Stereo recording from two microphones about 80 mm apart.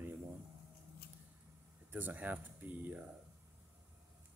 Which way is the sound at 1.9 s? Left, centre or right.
Right.